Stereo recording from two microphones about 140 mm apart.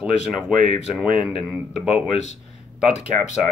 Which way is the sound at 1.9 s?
45° left (ahead or behind).